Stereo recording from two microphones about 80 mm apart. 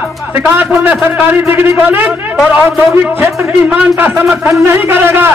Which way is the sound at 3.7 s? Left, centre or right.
Right.